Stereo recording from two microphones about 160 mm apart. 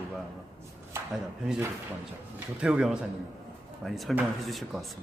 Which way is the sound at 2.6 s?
5° right (ahead or behind).